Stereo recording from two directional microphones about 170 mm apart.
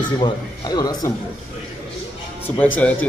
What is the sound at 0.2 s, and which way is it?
Speech, 25° left (ahead or behind).